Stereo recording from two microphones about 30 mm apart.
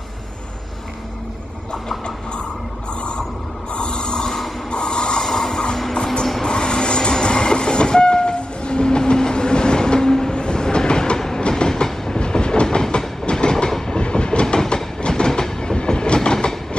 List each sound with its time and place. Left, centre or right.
2.9 s a sound: left
5.2 s vehicle: centre
6.4 s train: left
11.1 s train: centre
13.7 s train: centre
13.9 s train: left